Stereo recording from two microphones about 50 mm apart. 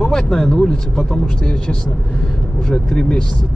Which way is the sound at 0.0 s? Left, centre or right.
Centre.